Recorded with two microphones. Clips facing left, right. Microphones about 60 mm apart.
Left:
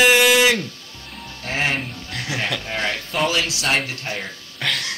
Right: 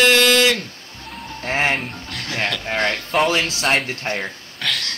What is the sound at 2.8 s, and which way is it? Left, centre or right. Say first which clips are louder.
Speech: right 6 dB; right.